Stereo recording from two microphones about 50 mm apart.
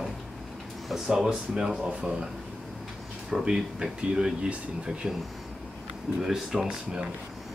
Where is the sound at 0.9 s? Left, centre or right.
Centre.